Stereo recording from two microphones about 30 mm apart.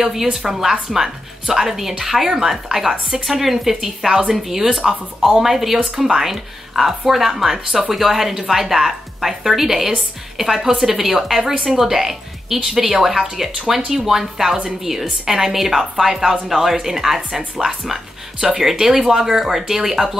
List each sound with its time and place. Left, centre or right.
0.0 s speech: centre
3.3 s speech: centre
6.2 s speech: centre
18.4 s speech: centre